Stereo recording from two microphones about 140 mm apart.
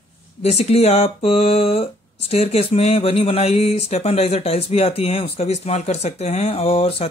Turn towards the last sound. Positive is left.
turn(degrees=45)  # may be behind; listen again after turning